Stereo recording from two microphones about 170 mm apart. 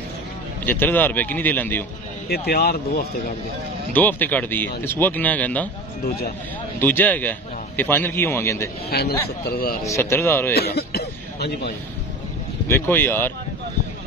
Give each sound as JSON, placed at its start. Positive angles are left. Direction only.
{"t": 0.7, "sound": "a man's voice", "side_deg": 10}
{"t": 2.2, "sound": "speech", "side_deg": 65}
{"t": 3.9, "sound": "a man's voice", "side_deg": 10}
{"t": 6.0, "sound": "speech", "side_deg": 65}
{"t": 6.8, "sound": "a man's voice", "side_deg": 10}
{"t": 8.9, "sound": "speech", "side_deg": 65}
{"t": 9.8, "sound": "a man's voice", "side_deg": 15}
{"t": 10.5, "sound": "throat clearing", "side_deg": 70}
{"t": 12.6, "sound": "a man's voice", "side_deg": 15}